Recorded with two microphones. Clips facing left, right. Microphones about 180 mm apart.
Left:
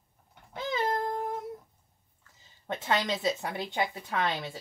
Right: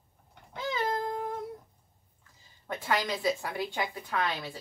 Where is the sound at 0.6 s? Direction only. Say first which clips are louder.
Left 1 dB; 20° left (ahead or behind).